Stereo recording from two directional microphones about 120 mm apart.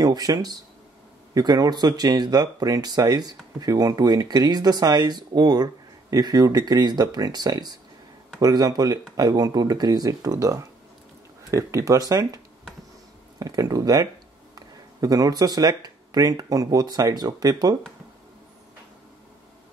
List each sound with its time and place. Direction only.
0.0 s speech: 35° right (ahead or behind)
13.4 s speech: 30° right (ahead or behind)